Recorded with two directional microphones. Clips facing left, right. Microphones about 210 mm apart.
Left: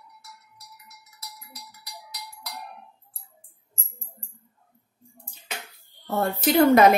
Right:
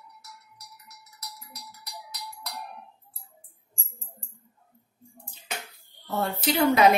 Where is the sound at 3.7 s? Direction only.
20° left (ahead or behind).